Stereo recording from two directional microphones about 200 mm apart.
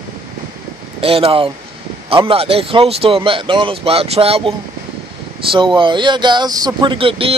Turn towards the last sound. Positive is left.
turn(degrees=-25)  # may be behind; listen again after turning